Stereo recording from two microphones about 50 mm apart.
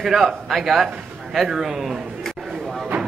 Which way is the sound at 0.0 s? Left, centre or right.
Centre.